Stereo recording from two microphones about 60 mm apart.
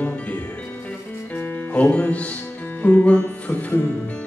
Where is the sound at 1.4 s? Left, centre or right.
Left.